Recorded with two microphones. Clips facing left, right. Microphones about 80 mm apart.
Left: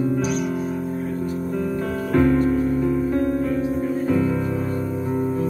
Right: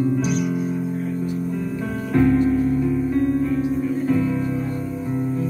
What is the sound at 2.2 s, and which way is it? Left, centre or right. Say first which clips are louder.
Music: right 1 dB; left.